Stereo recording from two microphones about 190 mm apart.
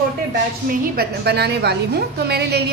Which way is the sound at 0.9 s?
60° right (ahead or behind).